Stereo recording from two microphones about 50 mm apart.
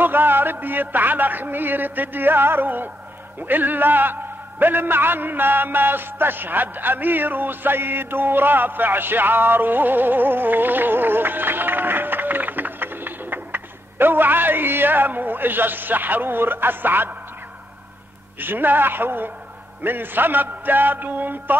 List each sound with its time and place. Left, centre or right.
0.0 s a man's voice: right
18.4 s a man's voice: right